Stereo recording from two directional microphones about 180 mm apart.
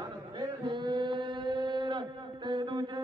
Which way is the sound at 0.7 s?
25° right (ahead or behind).